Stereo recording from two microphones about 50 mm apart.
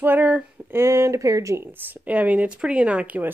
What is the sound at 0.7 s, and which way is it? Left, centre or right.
Speech, right.